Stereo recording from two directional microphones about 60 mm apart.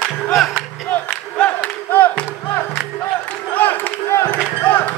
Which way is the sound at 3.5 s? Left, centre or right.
Left.